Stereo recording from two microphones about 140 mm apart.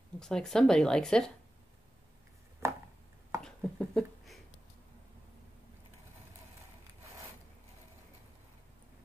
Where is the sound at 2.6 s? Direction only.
20° right (ahead or behind).